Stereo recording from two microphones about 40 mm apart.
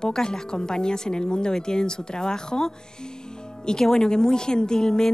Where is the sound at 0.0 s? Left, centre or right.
Centre.